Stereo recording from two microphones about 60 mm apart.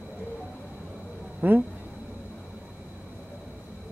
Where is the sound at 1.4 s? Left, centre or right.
Right.